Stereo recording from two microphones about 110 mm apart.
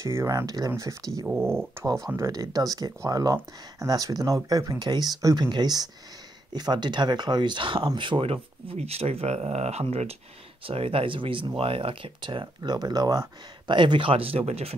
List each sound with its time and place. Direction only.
0.0 s speech: 25° right (ahead or behind)
1.2 s speech: 20° right (ahead or behind); by 10.1 s 70° right (ahead or behind)
10.6 s speech: 60° right (ahead or behind)